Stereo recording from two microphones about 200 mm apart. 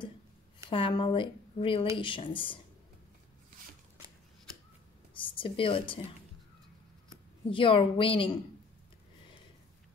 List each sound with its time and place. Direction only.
0.7 s speech: 25° left (ahead or behind)
5.1 s a woman's voice: 25° left (ahead or behind)
7.4 s speech: 25° left (ahead or behind)